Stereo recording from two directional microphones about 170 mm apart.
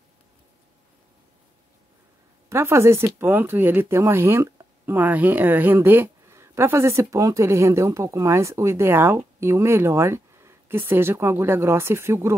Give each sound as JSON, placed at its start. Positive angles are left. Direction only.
{"t": 2.5, "sound": "speech", "side_deg": -15}